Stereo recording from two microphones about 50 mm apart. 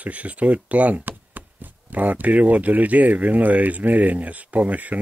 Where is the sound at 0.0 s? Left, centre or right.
Right.